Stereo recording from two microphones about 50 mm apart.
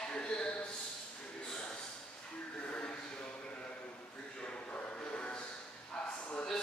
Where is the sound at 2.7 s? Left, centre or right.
Left.